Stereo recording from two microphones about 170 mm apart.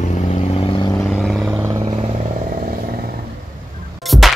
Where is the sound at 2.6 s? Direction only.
60° right (ahead or behind).